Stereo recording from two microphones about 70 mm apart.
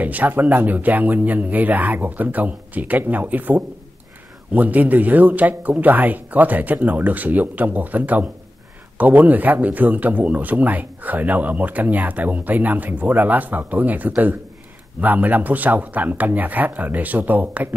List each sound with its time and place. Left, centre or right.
0.0 s a man's voice: right